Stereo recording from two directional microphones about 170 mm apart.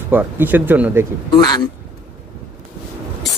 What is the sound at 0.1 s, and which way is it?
Speech, 10° right (ahead or behind).